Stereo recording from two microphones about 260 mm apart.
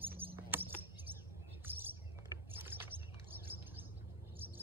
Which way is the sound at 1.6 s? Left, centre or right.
Centre.